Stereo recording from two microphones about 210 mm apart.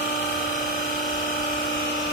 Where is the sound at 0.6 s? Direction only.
45° left (ahead or behind).